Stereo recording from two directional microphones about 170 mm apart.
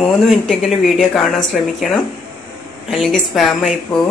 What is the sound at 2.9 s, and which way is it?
Speech, centre (ahead or behind).